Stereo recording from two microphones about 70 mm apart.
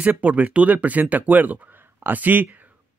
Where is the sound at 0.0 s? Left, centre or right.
Right.